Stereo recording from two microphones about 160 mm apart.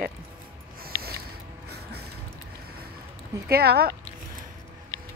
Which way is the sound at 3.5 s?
75° right (ahead or behind).